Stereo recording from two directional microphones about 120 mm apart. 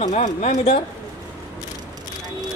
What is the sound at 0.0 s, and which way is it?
Speech, 75° left (ahead or behind).